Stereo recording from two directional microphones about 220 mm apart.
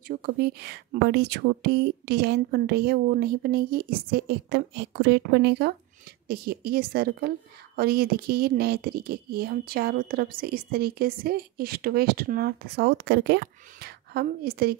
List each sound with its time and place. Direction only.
0.1 s a woman's voice: 45° right (ahead or behind)